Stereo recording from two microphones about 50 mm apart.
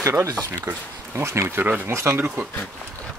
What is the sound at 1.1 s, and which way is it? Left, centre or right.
Speech, right.